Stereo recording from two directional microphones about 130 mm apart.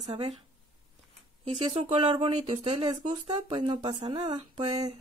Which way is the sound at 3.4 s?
40° right (ahead or behind).